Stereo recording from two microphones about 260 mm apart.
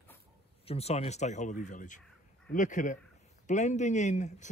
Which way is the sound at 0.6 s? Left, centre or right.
Left.